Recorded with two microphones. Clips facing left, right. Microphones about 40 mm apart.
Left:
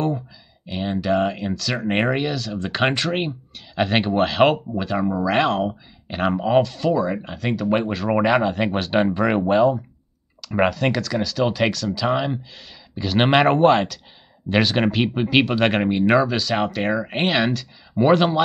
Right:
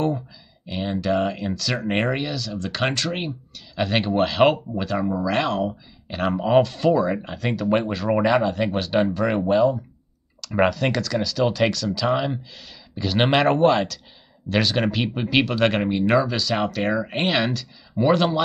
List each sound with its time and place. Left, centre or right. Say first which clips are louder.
0.7 s speech: left 1 dB; centre
6.3 s speech: right 1 dB; centre
8.1 s speech: left 1 dB; centre